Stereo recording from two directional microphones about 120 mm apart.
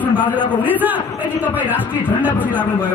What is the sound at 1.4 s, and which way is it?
Speech, 15° right (ahead or behind).